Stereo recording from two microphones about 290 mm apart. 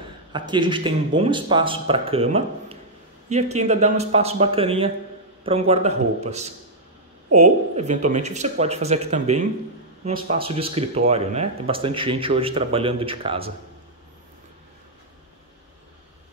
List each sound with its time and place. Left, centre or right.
0.3 s speech: centre